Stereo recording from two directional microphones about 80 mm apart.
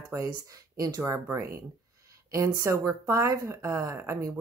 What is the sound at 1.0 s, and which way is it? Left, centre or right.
Speech, right.